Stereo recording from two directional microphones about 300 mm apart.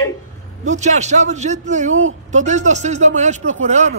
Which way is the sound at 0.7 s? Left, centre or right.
Right.